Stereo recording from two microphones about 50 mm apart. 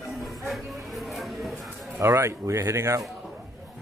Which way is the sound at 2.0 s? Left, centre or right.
Right.